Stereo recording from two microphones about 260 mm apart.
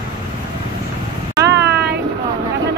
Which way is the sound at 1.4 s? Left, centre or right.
Right.